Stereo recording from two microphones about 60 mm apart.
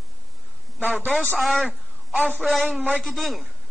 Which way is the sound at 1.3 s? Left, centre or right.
Centre.